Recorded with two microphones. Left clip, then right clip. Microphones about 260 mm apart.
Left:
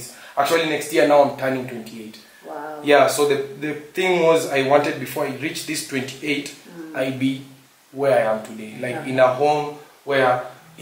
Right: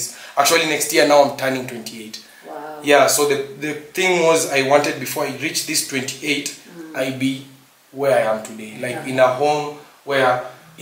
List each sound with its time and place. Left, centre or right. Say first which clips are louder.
0.3 s speech: right 3 dB; centre
2.5 s a sound: even; centre
2.8 s speech: right 1 dB; centre